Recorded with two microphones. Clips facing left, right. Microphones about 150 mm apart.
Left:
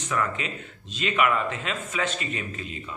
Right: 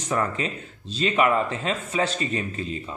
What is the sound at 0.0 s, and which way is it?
Speech, 35° right (ahead or behind).